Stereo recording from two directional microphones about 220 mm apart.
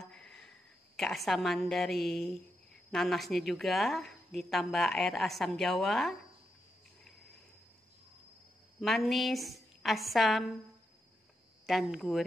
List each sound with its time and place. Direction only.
0.0 s a sound: 5° left (ahead or behind)
0.9 s a woman's voice: centre (ahead or behind)
8.8 s a woman's voice: centre (ahead or behind)
11.6 s a woman's voice: centre (ahead or behind)